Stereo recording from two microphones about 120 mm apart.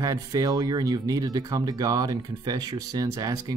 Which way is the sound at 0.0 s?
30° right (ahead or behind).